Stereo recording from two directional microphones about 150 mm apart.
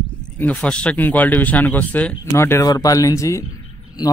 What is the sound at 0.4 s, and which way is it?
A man's voice, 10° left (ahead or behind).